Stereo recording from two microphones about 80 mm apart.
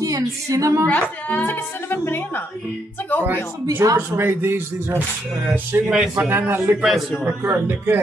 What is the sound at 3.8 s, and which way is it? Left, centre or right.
Speech, right.